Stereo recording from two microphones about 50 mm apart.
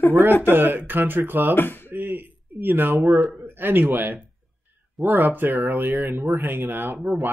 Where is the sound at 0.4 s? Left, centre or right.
Right.